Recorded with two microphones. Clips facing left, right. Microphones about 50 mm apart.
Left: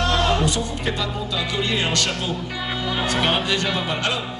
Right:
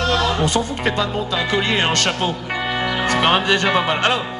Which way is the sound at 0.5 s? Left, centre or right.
Right.